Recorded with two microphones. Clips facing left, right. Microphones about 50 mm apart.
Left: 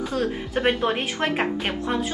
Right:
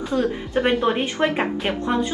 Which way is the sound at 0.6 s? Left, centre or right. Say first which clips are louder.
Right 3 dB; centre.